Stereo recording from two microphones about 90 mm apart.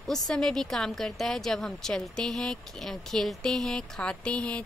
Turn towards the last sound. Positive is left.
turn(degrees=10)  # may be behind; listen again after turning